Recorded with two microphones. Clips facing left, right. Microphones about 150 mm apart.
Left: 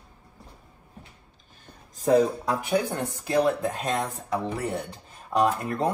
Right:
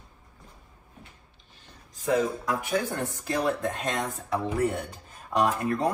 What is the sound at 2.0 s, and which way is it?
Speech, 35° left (ahead or behind).